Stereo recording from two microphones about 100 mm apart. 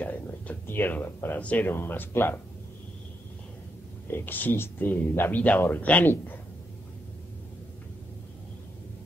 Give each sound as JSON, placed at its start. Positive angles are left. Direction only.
{"t": 0.0, "sound": "speech", "side_deg": 15}
{"t": 4.1, "sound": "speech", "side_deg": 20}